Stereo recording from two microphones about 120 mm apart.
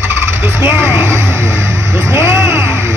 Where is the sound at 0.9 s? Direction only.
20° right (ahead or behind).